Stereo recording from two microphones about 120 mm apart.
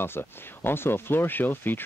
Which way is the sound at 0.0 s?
20° left (ahead or behind).